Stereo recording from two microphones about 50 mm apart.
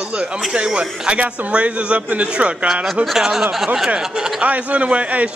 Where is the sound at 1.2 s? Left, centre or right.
Right.